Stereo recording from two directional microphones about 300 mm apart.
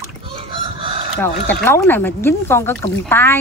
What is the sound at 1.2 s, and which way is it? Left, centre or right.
Speech, centre.